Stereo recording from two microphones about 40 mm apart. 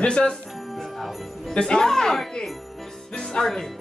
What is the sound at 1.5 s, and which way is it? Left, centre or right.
Speech, centre.